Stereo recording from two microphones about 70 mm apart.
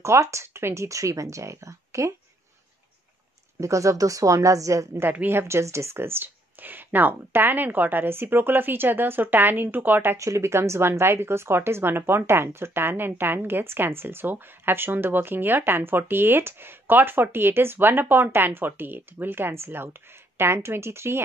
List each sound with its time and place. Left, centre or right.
0.0 s speech: right
3.6 s speech: right
5.1 s speech: right
5.4 s speech: right
10.1 s speech: right